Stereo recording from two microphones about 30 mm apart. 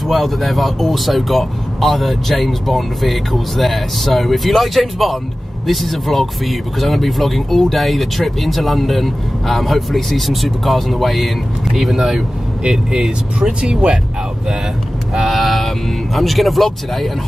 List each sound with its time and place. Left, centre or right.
0.1 s speech: centre
12.6 s speech: right
13.5 s speech: right
15.1 s speech: centre